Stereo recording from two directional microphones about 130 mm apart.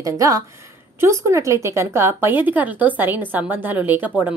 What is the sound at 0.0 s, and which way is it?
Speech, 25° right (ahead or behind).